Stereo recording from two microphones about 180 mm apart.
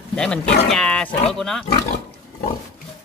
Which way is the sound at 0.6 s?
5° left (ahead or behind).